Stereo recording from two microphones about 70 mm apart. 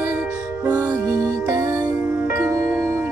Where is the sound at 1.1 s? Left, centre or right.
Right.